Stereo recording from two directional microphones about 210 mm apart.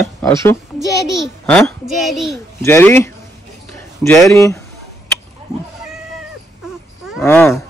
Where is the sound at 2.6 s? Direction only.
10° left (ahead or behind).